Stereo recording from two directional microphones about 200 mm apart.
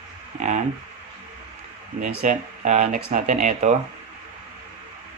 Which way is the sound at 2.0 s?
40° right (ahead or behind).